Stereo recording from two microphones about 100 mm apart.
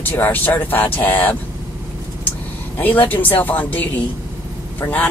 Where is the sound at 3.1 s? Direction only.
20° left (ahead or behind).